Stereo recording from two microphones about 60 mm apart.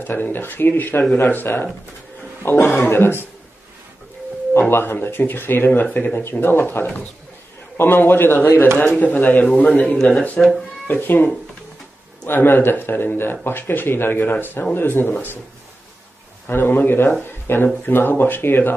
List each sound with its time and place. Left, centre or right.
0.0 s speech: left
4.6 s a man's voice: left
9.9 s speech: centre
10.9 s speech: left
12.3 s speech: left
16.4 s speech: left